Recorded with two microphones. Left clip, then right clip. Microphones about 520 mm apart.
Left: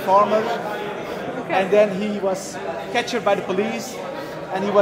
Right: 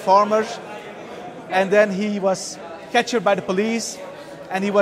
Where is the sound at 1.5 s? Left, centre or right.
Right.